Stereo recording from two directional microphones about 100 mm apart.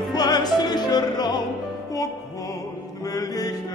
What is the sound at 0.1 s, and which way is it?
Music, 40° left (ahead or behind).